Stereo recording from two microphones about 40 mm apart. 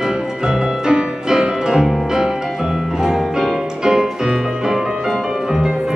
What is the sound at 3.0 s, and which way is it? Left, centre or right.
Music, centre.